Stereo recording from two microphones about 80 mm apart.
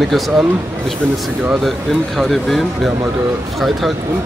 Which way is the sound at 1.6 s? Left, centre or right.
Centre.